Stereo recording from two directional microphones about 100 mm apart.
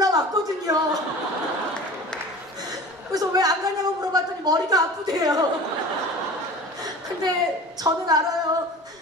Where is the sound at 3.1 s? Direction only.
40° right (ahead or behind).